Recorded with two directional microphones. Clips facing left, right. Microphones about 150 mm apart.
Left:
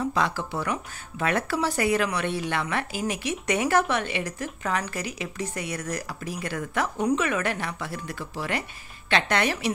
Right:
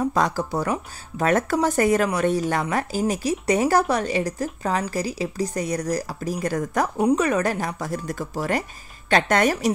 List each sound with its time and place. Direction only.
0.0 s speech: 40° right (ahead or behind)